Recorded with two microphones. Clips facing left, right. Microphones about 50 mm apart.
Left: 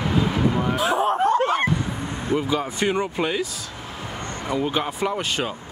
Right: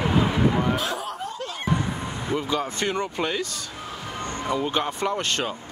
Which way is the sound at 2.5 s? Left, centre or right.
Centre.